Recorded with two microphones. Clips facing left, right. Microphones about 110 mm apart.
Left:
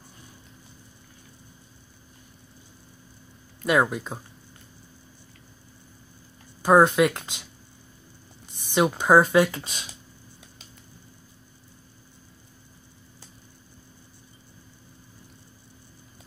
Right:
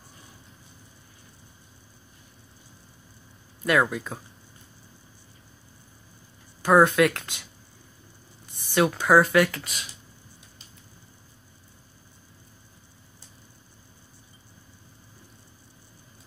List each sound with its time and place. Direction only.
3.6 s speech: 20° left (ahead or behind)
6.6 s speech: 20° left (ahead or behind)
8.6 s speech: 20° left (ahead or behind)